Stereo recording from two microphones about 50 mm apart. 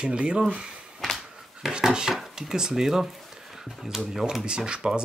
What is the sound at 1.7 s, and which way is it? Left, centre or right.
Dishes, centre.